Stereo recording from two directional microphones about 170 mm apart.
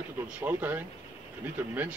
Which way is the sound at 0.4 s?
10° right (ahead or behind).